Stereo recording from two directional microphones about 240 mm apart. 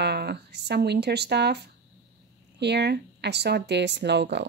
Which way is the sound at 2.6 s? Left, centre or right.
Right.